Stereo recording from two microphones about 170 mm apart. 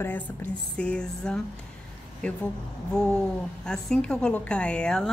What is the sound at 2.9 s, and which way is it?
A woman's voice, 5° left (ahead or behind).